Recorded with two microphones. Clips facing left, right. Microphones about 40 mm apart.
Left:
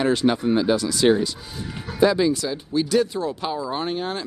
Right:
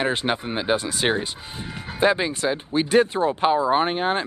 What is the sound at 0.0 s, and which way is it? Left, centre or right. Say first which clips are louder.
Speech: left 4 dB; right.